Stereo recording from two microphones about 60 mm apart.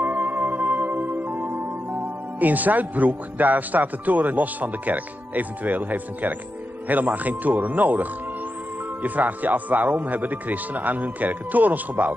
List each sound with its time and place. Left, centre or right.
0.0 s music: right
2.4 s a man's voice: right